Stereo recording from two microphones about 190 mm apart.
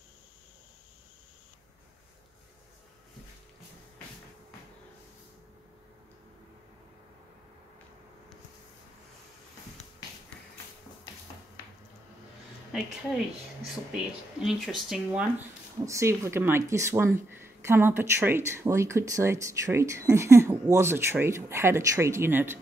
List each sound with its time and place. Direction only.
13.9 s speech: centre (ahead or behind)
15.8 s speech: 15° right (ahead or behind)